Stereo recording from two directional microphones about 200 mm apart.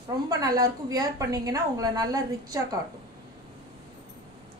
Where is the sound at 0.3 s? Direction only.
20° right (ahead or behind).